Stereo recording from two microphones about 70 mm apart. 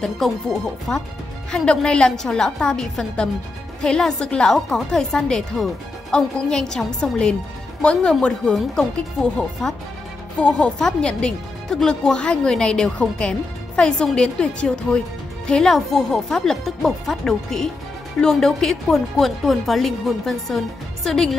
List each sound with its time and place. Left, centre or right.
0.0 s speech: centre